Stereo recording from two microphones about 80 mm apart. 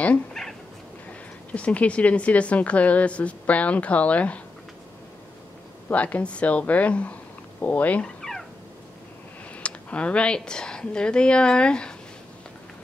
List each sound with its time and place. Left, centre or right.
0.3 s a sound: centre
1.5 s a woman's voice: centre
5.9 s a woman's voice: centre
7.6 s turkey: centre
8.2 s cat: centre
9.6 s speech: centre